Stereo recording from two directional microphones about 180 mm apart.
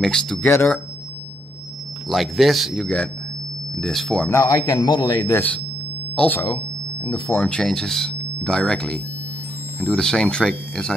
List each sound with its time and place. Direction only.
0.0 s speech: 5° left (ahead or behind)
2.0 s speech: centre (ahead or behind)
4.3 s a man's voice: 15° left (ahead or behind)
6.1 s speech: 5° left (ahead or behind)